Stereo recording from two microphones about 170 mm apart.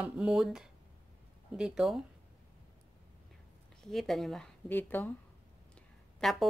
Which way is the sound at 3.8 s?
Centre (ahead or behind).